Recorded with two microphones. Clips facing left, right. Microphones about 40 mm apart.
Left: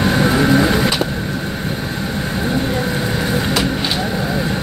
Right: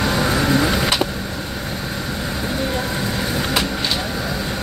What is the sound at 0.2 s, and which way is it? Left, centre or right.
Vehicle, left.